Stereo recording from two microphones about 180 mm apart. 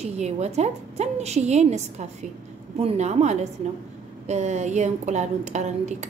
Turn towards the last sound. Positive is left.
turn(degrees=-40)  # may be behind; listen again after turning